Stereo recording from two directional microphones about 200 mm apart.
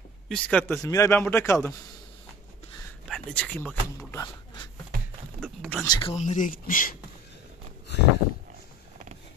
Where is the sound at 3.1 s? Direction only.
5° left (ahead or behind).